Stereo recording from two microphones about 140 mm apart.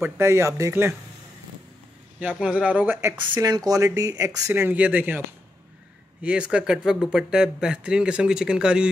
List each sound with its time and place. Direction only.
0.0 s speech: 20° right (ahead or behind)
2.1 s a man's voice: 5° right (ahead or behind)
3.0 s speech: 20° right (ahead or behind)
6.2 s speech: 10° right (ahead or behind)